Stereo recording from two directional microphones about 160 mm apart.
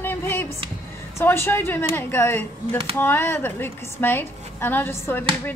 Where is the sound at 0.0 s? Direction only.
15° left (ahead or behind).